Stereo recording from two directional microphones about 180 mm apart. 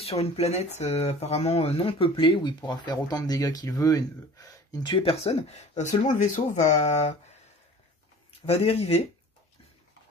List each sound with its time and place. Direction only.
0.0 s speech: 35° left (ahead or behind)
8.5 s speech: 35° left (ahead or behind)